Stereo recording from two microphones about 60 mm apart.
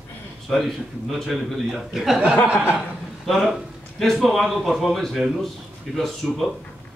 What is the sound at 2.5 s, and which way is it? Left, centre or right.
Chuckle, right.